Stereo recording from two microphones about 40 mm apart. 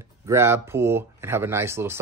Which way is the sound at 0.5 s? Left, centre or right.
Right.